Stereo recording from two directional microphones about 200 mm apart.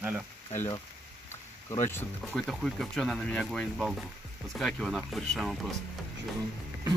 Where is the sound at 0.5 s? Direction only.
15° left (ahead or behind).